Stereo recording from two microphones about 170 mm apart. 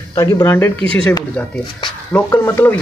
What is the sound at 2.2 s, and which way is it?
Speech, 20° left (ahead or behind).